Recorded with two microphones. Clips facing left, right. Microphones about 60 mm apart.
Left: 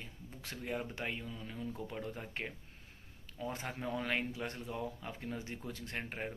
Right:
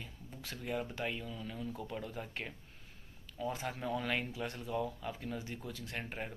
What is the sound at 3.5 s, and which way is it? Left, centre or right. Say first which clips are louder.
Speech: left 1 dB; left.